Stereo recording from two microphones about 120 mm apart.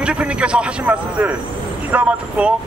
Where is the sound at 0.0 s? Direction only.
10° right (ahead or behind).